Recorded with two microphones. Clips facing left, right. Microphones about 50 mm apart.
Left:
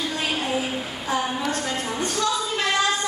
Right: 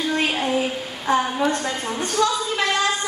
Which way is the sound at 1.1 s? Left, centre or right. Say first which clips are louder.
Right 6 dB; right.